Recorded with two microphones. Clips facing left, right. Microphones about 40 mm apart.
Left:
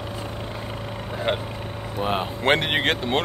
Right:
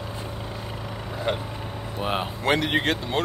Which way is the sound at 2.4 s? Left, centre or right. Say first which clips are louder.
Left 2 dB; left.